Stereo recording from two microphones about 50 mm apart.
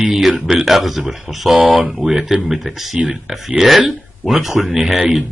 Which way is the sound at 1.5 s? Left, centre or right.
Right.